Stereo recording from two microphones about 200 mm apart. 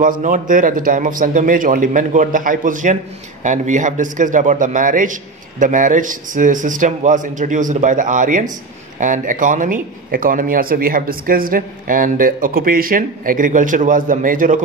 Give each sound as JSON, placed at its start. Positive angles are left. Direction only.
{"t": 0.0, "sound": "a man's voice", "side_deg": -40}